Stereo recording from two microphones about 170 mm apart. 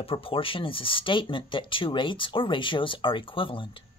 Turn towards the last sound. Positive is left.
turn(degrees=30)  # may be behind; listen again after turning